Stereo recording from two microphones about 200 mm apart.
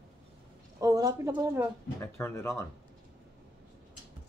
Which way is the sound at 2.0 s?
10° left (ahead or behind).